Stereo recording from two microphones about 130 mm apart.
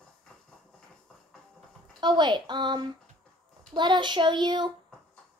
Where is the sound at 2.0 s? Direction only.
35° right (ahead or behind).